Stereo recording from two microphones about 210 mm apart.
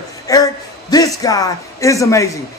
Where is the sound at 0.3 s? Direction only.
20° left (ahead or behind).